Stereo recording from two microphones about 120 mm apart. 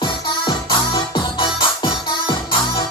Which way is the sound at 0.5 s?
35° left (ahead or behind).